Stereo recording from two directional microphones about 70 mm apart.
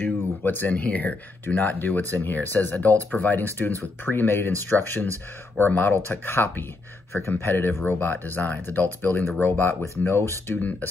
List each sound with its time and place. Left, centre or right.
0.0 s speech: left